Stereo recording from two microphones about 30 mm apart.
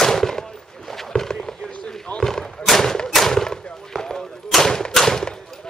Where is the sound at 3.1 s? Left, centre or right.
Centre.